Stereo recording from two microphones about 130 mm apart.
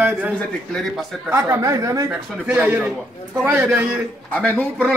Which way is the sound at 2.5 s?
15° right (ahead or behind).